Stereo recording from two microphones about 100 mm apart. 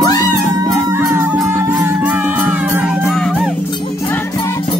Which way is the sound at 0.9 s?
20° right (ahead or behind).